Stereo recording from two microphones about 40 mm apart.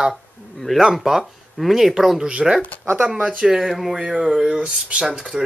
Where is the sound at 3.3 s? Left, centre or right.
Centre.